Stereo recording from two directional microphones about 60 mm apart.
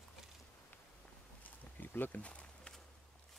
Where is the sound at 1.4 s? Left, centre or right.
Left.